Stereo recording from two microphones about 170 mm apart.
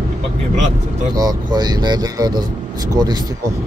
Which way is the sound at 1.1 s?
25° right (ahead or behind).